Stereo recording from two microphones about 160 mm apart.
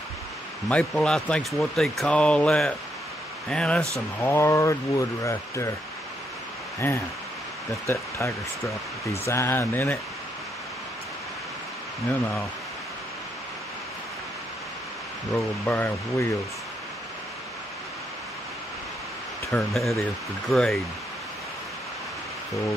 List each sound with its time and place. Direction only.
0.7 s speech: 5° left (ahead or behind)
6.8 s speech: 15° left (ahead or behind)
15.3 s speech: 10° left (ahead or behind)
19.7 s speech: centre (ahead or behind)